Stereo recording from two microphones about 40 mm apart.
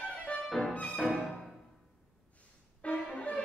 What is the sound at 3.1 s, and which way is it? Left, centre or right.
Music, left.